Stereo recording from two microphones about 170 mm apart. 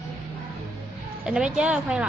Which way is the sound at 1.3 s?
5° right (ahead or behind).